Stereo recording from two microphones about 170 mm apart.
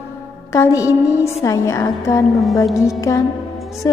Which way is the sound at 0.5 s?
20° left (ahead or behind).